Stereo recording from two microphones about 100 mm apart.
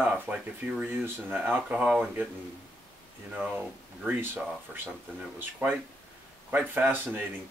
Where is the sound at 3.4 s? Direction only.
15° right (ahead or behind).